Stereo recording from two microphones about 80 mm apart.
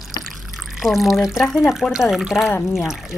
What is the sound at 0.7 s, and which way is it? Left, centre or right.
Speech, centre.